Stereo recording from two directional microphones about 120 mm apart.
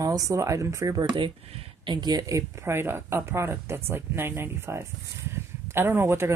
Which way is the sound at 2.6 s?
20° right (ahead or behind).